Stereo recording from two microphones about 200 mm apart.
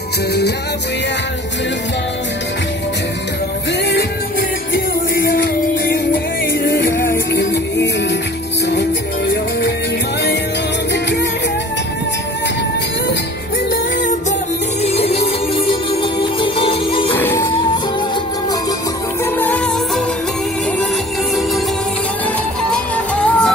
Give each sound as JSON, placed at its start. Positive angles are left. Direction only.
{"t": 3.9, "sound": "music", "side_deg": 45}
{"t": 6.9, "sound": "music", "side_deg": 15}
{"t": 7.3, "sound": "music", "side_deg": 60}
{"t": 14.8, "sound": "music", "side_deg": 30}
{"t": 17.1, "sound": "music", "side_deg": 10}
{"t": 19.3, "sound": "music", "side_deg": 5}
{"t": 22.7, "sound": "music", "side_deg": 5}